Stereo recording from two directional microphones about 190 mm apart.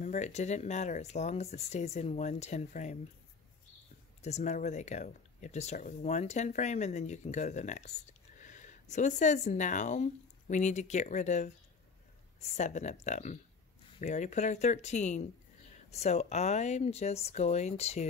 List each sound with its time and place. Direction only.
0.0 s speech: 35° left (ahead or behind)
4.2 s speech: 35° left (ahead or behind)